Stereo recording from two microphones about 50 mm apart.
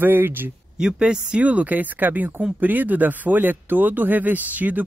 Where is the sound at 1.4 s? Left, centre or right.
Right.